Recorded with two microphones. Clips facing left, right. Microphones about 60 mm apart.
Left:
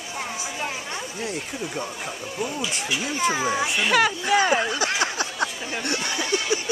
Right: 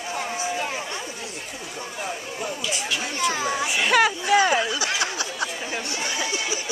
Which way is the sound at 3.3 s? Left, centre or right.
Centre.